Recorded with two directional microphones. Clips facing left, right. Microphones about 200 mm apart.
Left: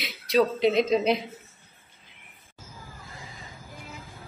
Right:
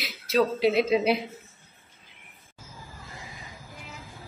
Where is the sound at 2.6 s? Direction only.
Centre (ahead or behind).